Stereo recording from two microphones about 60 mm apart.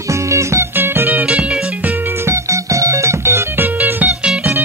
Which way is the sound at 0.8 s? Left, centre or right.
Right.